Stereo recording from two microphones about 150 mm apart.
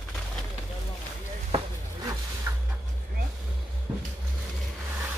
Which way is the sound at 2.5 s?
20° right (ahead or behind).